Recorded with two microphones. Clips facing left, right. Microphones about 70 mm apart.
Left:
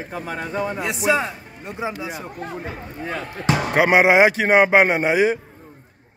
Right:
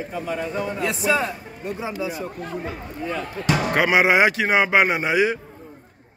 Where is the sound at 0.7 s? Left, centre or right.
Centre.